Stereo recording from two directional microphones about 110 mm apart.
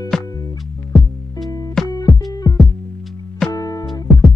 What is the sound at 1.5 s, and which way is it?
Music, 35° left (ahead or behind).